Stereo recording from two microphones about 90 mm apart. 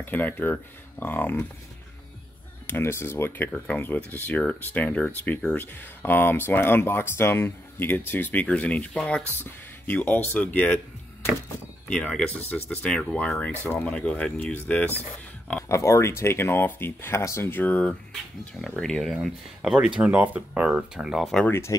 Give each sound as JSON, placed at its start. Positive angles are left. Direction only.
{"t": 0.0, "sound": "speech", "side_deg": 20}
{"t": 2.6, "sound": "speech", "side_deg": 25}
{"t": 11.9, "sound": "speech", "side_deg": 10}
{"t": 13.5, "sound": "speech", "side_deg": 20}
{"t": 15.7, "sound": "speech", "side_deg": 35}
{"t": 18.4, "sound": "speech", "side_deg": 5}
{"t": 21.5, "sound": "speech", "side_deg": 30}